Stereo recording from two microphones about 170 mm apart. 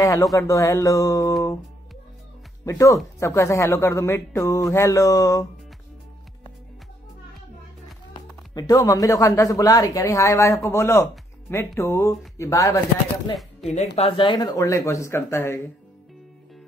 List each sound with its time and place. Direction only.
0.0 s speech: 20° left (ahead or behind)
2.6 s a man's voice: 20° left (ahead or behind)
8.1 s a man's voice: 25° left (ahead or behind)
13.9 s a man's voice: 35° left (ahead or behind); by 15.6 s 15° left (ahead or behind)